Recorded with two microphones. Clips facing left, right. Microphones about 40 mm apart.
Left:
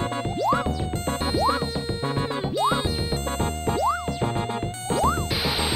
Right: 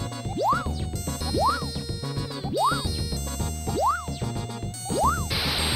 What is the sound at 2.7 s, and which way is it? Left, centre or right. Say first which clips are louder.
Music: left 5 dB; left.